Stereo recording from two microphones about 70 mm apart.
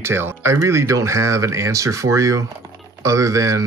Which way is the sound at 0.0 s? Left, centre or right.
Right.